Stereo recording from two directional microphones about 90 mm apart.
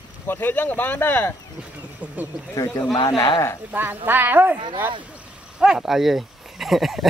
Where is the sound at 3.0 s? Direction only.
40° left (ahead or behind).